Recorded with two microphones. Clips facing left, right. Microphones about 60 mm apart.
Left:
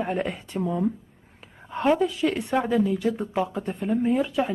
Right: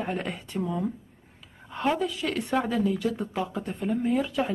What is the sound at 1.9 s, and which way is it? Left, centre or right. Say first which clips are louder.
Speech: left 5 dB; left.